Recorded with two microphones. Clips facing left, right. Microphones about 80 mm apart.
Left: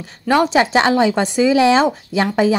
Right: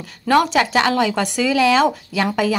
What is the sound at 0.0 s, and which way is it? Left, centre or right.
A woman's voice, left.